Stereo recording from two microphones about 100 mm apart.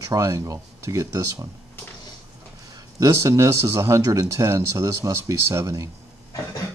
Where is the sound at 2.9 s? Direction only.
30° right (ahead or behind).